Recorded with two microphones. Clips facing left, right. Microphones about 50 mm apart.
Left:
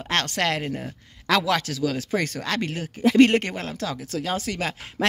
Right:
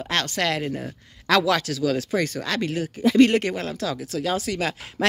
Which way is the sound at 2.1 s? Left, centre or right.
Left.